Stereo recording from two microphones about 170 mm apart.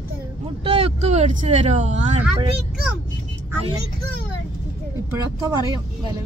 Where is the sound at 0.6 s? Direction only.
35° right (ahead or behind).